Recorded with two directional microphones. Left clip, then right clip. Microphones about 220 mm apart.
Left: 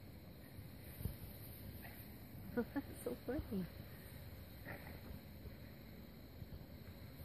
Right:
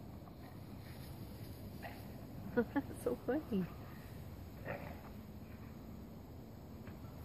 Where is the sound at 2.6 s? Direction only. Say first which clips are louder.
Right 6 dB; 25° left (ahead or behind).